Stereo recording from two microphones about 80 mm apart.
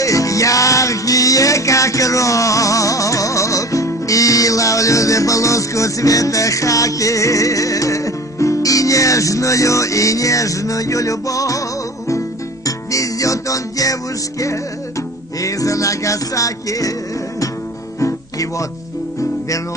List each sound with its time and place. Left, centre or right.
0.0 s music: left
12.6 s music: left
15.4 s music: left
18.0 s music: left